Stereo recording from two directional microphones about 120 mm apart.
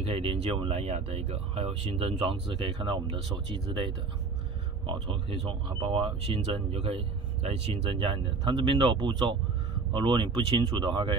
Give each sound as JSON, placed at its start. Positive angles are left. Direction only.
{"t": 0.0, "sound": "speech", "side_deg": -55}